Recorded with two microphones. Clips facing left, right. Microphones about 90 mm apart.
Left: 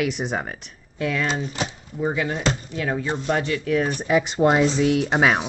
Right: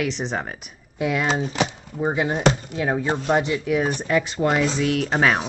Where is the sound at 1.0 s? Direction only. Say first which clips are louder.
Right 2 dB; 15° right (ahead or behind).